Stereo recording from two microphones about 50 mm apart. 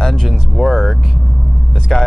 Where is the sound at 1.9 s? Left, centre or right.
Centre.